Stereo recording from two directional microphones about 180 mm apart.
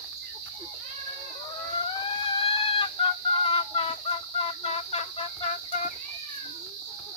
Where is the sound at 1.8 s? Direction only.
30° left (ahead or behind).